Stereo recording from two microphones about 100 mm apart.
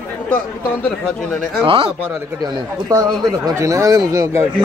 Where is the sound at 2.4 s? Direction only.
40° right (ahead or behind).